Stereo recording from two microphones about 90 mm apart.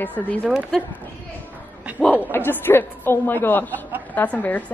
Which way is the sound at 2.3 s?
25° left (ahead or behind).